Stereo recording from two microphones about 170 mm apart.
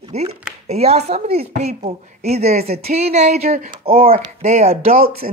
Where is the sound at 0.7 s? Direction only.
40° right (ahead or behind).